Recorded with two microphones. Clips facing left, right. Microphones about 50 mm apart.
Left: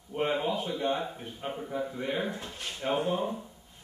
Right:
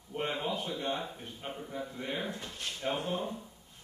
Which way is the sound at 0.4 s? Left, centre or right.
Centre.